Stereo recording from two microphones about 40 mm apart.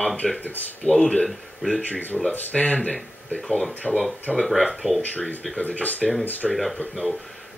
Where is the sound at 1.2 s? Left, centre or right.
Centre.